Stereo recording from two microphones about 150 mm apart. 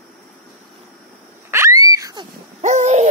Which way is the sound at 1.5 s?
20° right (ahead or behind).